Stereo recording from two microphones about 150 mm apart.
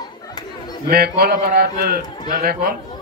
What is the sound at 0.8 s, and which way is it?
A man's voice, 90° right.